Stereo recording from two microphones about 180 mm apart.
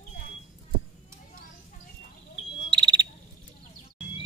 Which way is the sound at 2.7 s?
25° right (ahead or behind).